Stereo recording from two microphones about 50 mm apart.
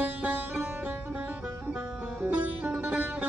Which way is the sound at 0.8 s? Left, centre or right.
Right.